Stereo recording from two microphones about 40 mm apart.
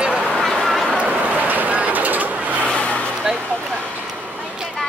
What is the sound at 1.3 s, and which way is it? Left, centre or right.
Vehicle, right.